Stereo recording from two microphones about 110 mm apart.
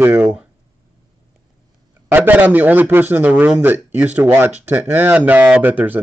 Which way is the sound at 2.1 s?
15° right (ahead or behind).